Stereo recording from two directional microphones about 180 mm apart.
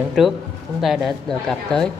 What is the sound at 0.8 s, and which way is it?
A woman's voice, centre (ahead or behind).